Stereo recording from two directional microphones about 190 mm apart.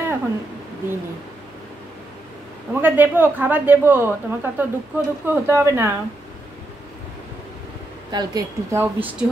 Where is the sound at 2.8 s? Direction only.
10° right (ahead or behind).